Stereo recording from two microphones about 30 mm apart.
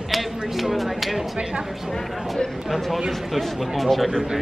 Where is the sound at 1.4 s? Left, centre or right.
Right.